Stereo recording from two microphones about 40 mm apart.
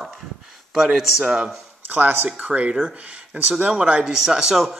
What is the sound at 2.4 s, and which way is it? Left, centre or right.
Speech, right.